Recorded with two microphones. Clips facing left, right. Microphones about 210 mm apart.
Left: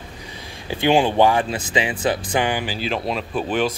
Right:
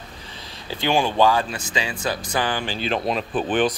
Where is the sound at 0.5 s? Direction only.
15° left (ahead or behind).